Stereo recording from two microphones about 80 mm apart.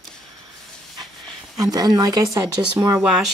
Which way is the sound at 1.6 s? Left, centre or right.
Right.